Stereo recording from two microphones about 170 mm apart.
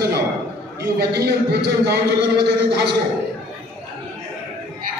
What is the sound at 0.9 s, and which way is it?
A man's voice, 75° right (ahead or behind).